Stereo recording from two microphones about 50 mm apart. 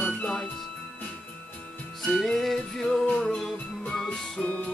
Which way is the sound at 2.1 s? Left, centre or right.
Centre.